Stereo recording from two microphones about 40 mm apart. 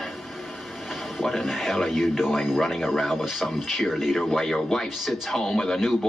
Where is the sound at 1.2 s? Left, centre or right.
Centre.